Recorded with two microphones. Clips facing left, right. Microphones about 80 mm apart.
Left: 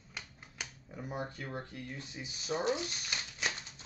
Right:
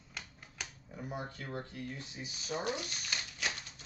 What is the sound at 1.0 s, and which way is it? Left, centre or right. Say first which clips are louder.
Speech: left 2 dB; left.